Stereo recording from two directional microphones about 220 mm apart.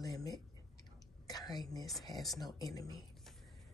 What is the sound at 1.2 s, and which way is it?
Whispering, 15° left (ahead or behind).